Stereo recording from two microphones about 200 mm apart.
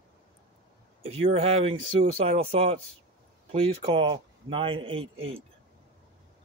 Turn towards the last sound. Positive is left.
turn(degrees=-30)  # may be behind; listen again after turning